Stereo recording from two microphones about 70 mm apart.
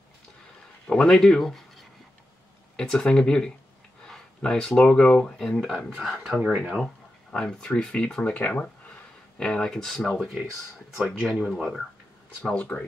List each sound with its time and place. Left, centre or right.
0.8 s speech: centre
5.9 s speech: centre
6.4 s speech: centre
6.8 s speech: centre
9.4 s speech: centre